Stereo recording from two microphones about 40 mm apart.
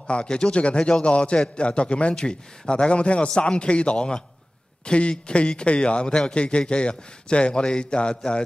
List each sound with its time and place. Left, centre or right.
0.0 s a man's voice: left